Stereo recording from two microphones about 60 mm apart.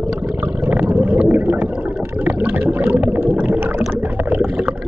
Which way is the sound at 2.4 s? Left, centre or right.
Right.